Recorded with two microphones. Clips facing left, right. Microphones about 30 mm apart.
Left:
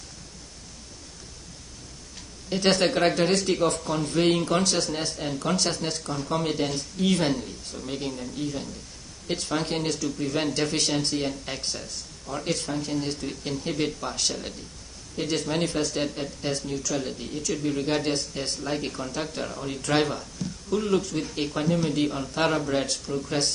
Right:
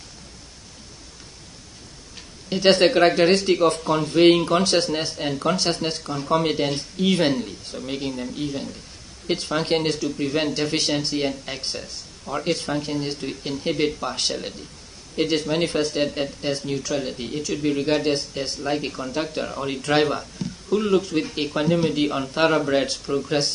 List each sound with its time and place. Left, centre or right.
2.7 s speech: right
9.7 s speech: right
10.3 s speech: centre
14.1 s speech: right
19.6 s speech: right
19.9 s speech: centre